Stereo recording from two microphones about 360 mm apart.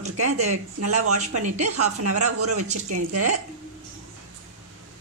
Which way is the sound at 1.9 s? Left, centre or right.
Right.